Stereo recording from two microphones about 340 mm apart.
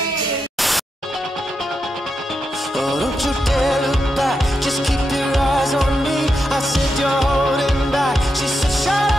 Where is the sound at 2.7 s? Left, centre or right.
Centre.